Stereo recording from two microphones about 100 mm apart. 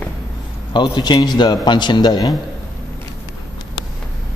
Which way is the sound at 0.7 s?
50° left (ahead or behind).